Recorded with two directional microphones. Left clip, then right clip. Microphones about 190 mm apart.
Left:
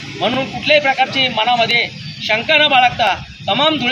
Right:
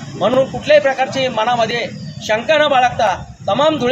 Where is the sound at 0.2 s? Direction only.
20° right (ahead or behind).